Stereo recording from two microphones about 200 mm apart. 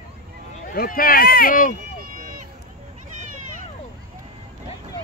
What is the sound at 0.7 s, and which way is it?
Speech, 45° left (ahead or behind).